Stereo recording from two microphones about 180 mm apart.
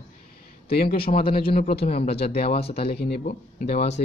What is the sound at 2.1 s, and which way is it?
Speech, 35° left (ahead or behind).